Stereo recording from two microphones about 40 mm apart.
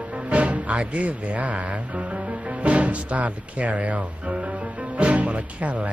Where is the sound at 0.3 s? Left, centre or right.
Right.